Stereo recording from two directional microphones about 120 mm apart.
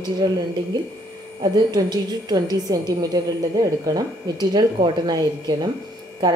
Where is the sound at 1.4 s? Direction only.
35° right (ahead or behind).